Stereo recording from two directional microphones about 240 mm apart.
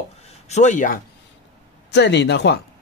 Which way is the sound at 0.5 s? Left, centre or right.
Left.